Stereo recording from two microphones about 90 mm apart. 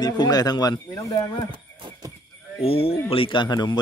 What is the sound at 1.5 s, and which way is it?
Horse, 65° right (ahead or behind).